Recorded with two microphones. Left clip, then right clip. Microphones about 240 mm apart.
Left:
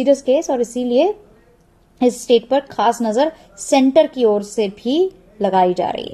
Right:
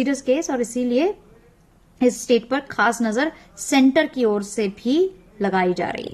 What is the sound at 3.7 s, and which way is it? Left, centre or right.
Speech, right.